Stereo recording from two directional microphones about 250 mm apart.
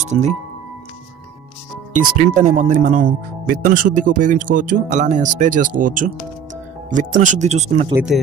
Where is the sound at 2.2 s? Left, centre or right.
Right.